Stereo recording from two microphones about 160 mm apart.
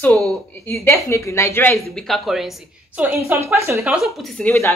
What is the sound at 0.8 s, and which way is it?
Speech, 15° left (ahead or behind).